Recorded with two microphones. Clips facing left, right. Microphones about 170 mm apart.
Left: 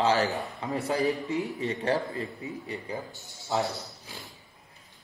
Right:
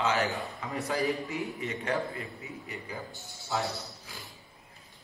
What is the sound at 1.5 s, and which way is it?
A man's voice, 35° left (ahead or behind).